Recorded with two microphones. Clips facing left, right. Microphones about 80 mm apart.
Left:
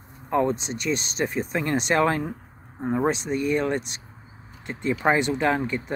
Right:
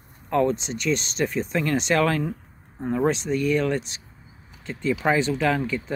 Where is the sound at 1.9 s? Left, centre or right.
Left.